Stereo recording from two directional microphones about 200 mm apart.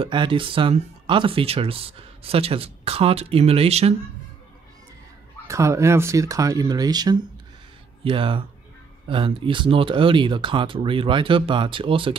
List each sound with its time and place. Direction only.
0.0 s speech: 25° right (ahead or behind)
5.5 s speech: 15° right (ahead or behind)